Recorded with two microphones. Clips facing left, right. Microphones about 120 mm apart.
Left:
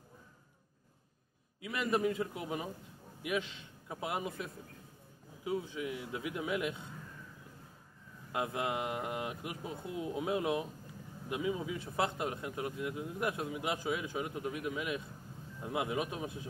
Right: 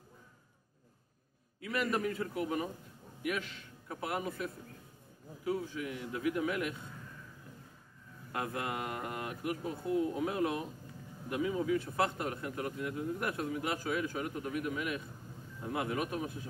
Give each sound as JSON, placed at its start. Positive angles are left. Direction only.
{"t": 1.6, "sound": "a man's voice", "side_deg": 20}
{"t": 8.3, "sound": "a man's voice", "side_deg": 15}